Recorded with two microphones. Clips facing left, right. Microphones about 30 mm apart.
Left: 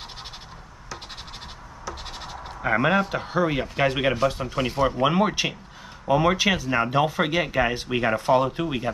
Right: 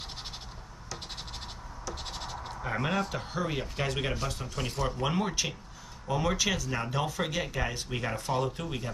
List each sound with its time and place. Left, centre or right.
1.9 s bleat: centre
2.6 s speech: left
2.9 s speech: left